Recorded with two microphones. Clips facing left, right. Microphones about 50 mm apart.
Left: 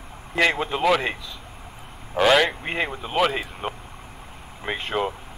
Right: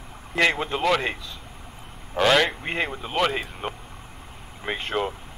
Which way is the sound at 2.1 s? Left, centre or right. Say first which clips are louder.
Left 2 dB; centre.